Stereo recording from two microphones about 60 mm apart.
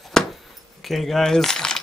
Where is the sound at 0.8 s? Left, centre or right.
Centre.